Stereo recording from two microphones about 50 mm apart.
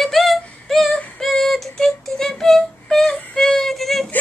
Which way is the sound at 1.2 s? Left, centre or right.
Centre.